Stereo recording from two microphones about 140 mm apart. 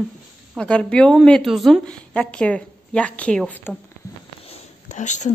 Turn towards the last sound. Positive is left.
turn(degrees=60)  # may be behind; listen again after turning